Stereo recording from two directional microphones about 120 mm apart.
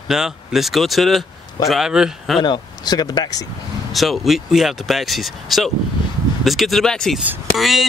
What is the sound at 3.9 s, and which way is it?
Speech, centre (ahead or behind).